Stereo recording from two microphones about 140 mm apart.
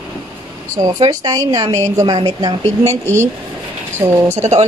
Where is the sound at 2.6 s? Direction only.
50° right (ahead or behind).